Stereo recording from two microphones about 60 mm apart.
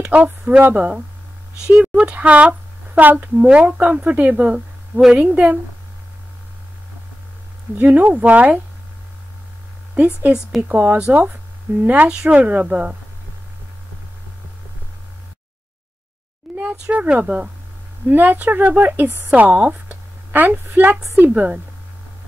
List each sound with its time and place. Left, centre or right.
0.1 s speech: right
7.7 s speech: right
9.9 s speech: right
12.1 s speech: centre
12.4 s speech: right
16.5 s a sound: centre
16.9 s speech: right
18.0 s speech: right